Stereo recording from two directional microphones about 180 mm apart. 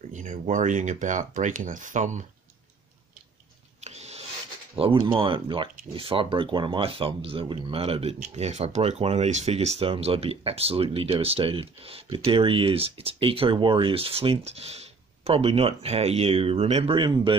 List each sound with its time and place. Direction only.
0.1 s speech: 45° right (ahead or behind)
3.8 s rub: 35° right (ahead or behind)
4.7 s speech: 30° right (ahead or behind)